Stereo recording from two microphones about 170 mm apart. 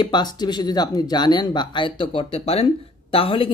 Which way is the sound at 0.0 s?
25° left (ahead or behind).